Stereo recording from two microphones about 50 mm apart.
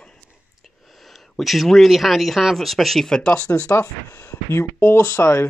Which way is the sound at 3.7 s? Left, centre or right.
Left.